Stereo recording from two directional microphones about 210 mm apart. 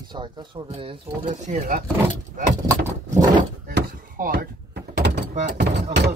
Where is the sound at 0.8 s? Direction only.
30° right (ahead or behind).